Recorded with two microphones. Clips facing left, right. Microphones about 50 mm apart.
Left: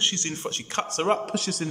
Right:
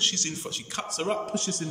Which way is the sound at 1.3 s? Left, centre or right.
Left.